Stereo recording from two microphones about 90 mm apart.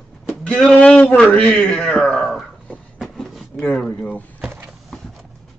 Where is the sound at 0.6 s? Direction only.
10° left (ahead or behind).